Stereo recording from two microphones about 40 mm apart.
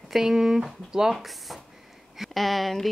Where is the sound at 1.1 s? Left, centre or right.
Centre.